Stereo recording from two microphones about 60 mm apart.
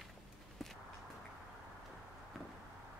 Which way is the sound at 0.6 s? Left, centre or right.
Centre.